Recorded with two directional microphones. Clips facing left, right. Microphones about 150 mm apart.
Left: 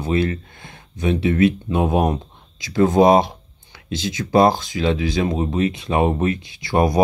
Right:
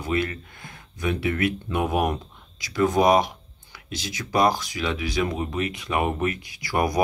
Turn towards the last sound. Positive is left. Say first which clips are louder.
# left 6 dB
turn(degrees=25)  # may be behind; listen again after turning